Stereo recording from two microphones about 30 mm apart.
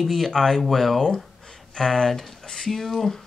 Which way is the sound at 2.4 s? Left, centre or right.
Left.